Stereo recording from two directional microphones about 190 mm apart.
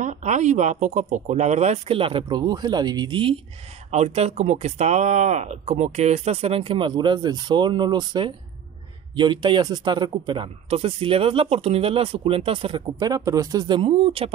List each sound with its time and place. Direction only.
0.0 s speech: 40° right (ahead or behind)